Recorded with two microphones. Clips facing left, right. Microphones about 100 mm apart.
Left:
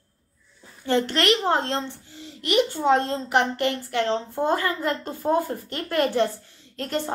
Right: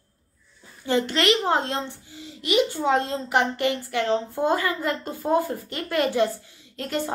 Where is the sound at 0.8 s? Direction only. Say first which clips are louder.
Even; 5° right (ahead or behind).